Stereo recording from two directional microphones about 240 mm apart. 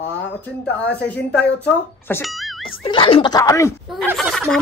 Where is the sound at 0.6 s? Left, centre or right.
Centre.